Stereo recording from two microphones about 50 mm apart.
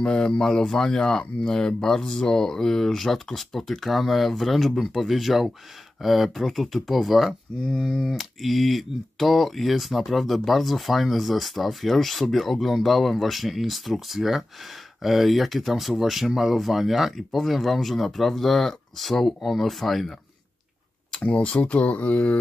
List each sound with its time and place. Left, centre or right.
0.0 s speech: centre
7.5 s speech: centre
21.1 s a sound: left
21.4 s speech: left